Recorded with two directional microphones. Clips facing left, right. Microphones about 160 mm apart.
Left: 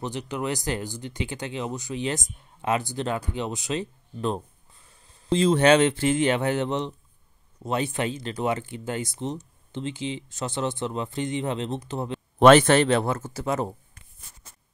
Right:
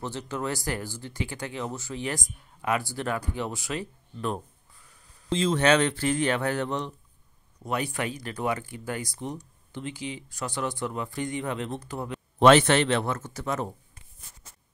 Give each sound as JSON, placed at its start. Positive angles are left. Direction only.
{"t": 0.0, "sound": "speech", "side_deg": 15}
{"t": 12.4, "sound": "speech", "side_deg": 50}